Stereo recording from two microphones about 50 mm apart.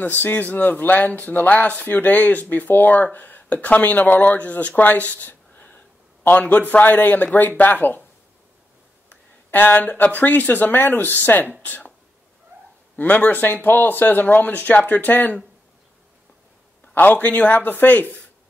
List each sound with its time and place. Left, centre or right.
0.0 s speech: left
9.1 s speech: left
12.9 s speech: left
16.9 s speech: left